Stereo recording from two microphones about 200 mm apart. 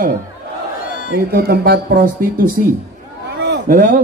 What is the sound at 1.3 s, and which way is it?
Speech, 50° right (ahead or behind).